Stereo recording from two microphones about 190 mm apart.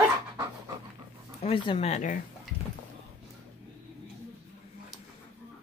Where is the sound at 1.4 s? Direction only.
30° left (ahead or behind).